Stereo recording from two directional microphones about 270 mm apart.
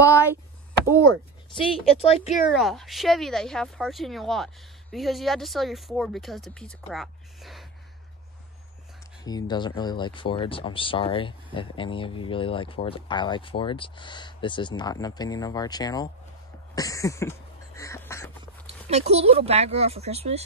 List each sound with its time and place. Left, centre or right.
1.6 s speech: left
2.5 s speech: centre
9.2 s speech: centre
16.7 s a sound: centre
18.7 s speech: right